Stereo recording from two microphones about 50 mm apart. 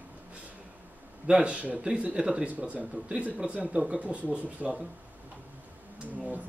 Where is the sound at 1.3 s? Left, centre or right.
Right.